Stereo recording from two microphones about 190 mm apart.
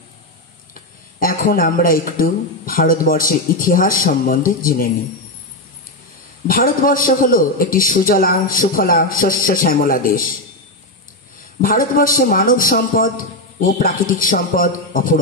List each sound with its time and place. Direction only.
0.7 s a man's voice: 50° left (ahead or behind)
6.4 s a man's voice: 50° left (ahead or behind)
11.6 s a man's voice: 50° left (ahead or behind)